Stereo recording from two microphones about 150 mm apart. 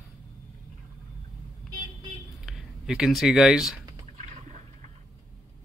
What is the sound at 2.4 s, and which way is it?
Speech, 5° right (ahead or behind).